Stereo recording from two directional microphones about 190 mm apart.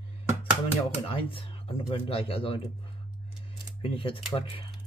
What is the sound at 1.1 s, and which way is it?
Speech, 25° left (ahead or behind).